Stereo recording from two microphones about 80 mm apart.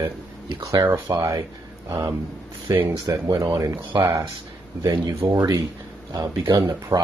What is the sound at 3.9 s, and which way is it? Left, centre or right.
Speech, right.